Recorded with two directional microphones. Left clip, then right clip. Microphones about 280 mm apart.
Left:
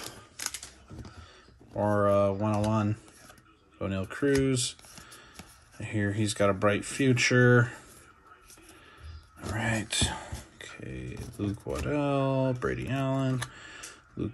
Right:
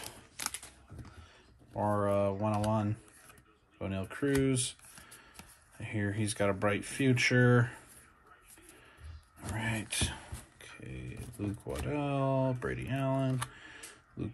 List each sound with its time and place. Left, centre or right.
0.4 s typewriter: right
1.8 s speech: centre
9.5 s a sound: centre
9.8 s speech: centre
10.6 s beatboxing: centre
11.6 s speech: centre